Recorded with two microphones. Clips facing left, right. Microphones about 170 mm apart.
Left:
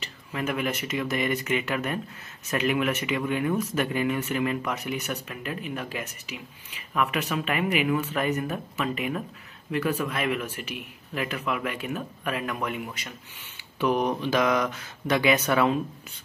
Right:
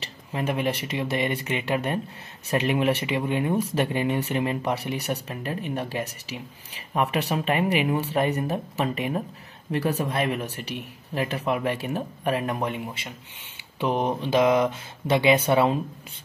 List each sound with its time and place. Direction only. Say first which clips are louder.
0.0 s speech: right 2 dB; 30° right (ahead or behind)